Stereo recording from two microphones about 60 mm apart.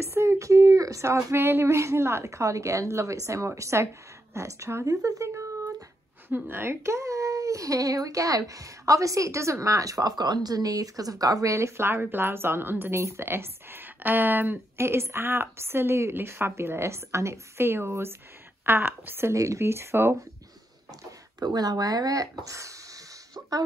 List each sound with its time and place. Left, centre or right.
0.0 s speech: right
1.0 s a woman's voice: right
4.8 s speech: right
6.2 s speech: right
11.5 s a woman's voice: right
14.8 s a woman's voice: right
19.3 s a woman's voice: right
21.6 s speech: right
22.4 s speech: right